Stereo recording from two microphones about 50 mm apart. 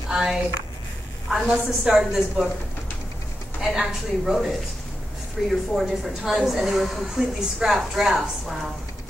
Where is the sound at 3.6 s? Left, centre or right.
Centre.